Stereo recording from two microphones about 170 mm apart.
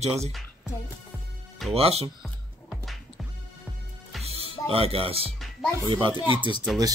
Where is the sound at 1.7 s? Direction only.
35° right (ahead or behind).